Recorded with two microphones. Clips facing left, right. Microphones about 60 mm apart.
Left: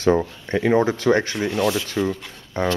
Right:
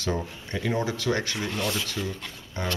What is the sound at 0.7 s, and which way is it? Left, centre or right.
Speech, left.